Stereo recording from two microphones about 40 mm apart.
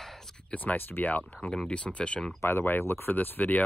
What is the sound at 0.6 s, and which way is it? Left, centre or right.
Speech, left.